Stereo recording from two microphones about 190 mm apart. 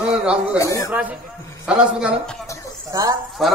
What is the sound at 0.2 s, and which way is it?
Speech, 5° right (ahead or behind).